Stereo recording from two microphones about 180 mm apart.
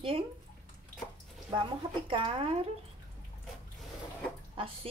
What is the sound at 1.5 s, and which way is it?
Speech, 30° right (ahead or behind).